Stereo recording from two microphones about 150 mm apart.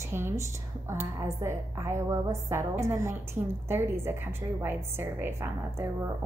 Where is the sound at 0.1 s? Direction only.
15° right (ahead or behind).